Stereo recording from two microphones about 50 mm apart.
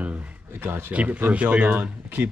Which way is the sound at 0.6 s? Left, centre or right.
Right.